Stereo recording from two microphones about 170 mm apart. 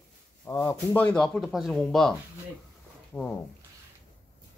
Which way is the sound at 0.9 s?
5° left (ahead or behind).